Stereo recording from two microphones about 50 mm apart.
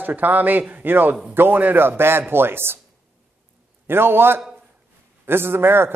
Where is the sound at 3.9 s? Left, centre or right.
Right.